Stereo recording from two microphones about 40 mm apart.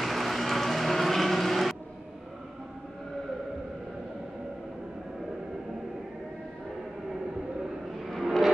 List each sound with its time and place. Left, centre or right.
0.0 s vehicle: centre
8.2 s vehicle: centre